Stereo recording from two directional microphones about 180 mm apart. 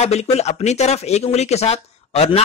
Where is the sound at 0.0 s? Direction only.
35° left (ahead or behind).